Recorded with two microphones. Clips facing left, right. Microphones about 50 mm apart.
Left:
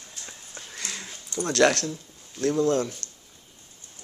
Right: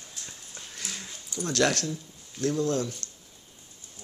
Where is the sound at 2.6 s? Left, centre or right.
Left.